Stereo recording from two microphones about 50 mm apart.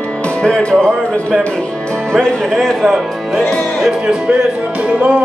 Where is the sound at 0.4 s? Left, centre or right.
Centre.